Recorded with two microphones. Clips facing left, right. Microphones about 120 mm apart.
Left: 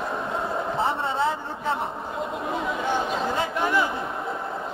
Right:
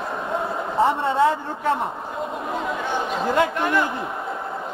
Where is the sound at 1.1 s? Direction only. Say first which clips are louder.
Right 6 dB; 55° right (ahead or behind).